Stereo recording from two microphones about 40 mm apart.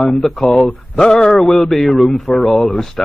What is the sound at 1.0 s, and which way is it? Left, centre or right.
Speech, centre.